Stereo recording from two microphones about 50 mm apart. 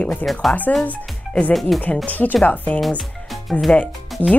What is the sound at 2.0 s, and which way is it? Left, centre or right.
Speech, left.